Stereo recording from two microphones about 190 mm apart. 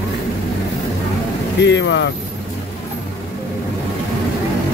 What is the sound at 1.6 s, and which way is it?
Speech, 65° left (ahead or behind).